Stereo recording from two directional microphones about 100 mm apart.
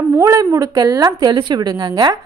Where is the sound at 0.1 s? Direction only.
30° right (ahead or behind).